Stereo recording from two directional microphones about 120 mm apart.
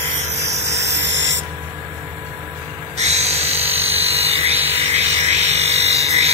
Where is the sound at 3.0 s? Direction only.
65° right (ahead or behind).